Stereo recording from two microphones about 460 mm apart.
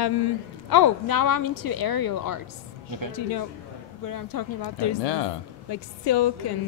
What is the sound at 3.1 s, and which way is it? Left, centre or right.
Speech, left.